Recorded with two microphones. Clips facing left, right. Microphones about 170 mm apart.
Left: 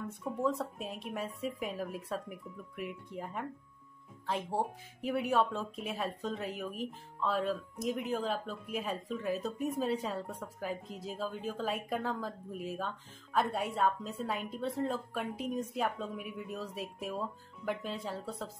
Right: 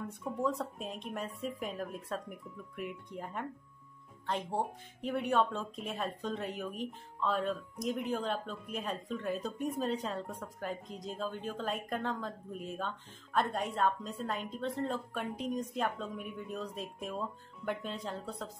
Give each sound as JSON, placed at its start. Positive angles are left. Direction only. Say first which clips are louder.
{"t": 0.2, "sound": "speech", "louder": "left 1 dB", "side_deg": 0}